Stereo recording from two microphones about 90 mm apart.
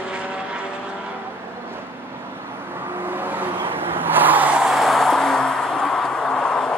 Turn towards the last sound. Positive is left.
turn(degrees=10)  # may be behind; listen again after turning